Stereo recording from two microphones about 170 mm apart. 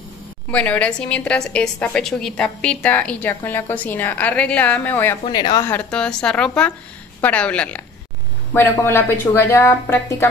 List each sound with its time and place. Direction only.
0.5 s a woman's voice: 10° left (ahead or behind)
5.2 s speech: 25° left (ahead or behind)
5.7 s a woman's voice: 5° left (ahead or behind)